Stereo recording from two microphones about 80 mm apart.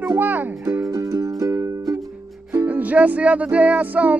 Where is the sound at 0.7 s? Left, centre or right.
Right.